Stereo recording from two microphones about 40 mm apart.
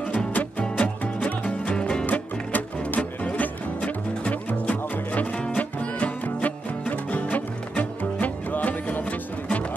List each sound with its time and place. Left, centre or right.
0.3 s music: left
1.8 s music: left
2.0 s music: left